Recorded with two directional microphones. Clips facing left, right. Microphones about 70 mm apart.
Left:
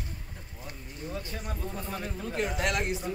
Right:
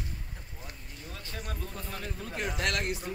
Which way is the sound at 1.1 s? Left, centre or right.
Centre.